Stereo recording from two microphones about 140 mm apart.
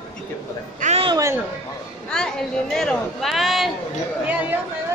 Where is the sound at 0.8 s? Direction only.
65° right (ahead or behind).